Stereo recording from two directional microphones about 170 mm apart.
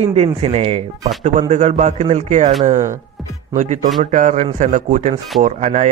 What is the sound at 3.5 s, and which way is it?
Speech, 45° right (ahead or behind).